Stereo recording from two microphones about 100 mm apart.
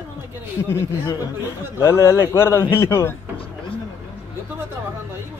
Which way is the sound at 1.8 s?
30° left (ahead or behind).